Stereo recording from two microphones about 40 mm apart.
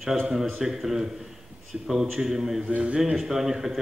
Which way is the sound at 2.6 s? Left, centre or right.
Right.